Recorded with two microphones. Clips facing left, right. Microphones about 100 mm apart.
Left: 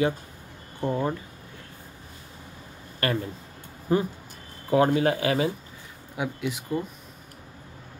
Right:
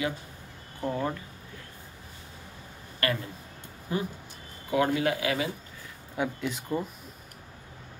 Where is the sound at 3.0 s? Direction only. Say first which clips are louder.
Left 3 dB; 30° left (ahead or behind).